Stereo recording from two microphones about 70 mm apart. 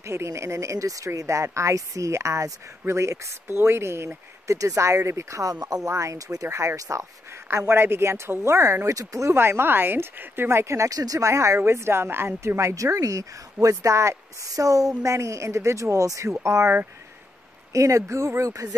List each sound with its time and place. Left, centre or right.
0.0 s speech: right
5.9 s speech: right
7.4 s speech: right
8.8 s speech: right
9.3 s speech: right
10.9 s speech: right
12.5 s speech: right
17.7 s speech: right